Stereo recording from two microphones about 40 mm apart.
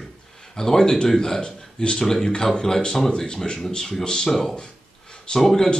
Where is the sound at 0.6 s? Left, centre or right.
Centre.